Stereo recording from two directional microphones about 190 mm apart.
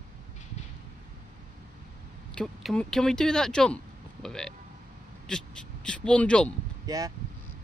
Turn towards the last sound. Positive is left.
turn(degrees=-20)  # may be behind; listen again after turning